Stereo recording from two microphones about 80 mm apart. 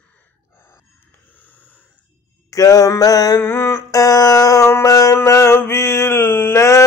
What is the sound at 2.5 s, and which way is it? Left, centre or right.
Mantra, left.